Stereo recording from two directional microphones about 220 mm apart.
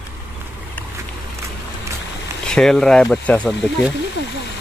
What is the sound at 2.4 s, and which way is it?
Speech, 5° left (ahead or behind).